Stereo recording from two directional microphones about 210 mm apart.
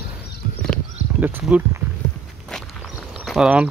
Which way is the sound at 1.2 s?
10° right (ahead or behind).